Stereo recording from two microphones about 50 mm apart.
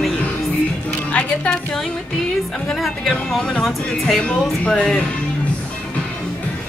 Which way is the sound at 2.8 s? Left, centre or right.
Centre.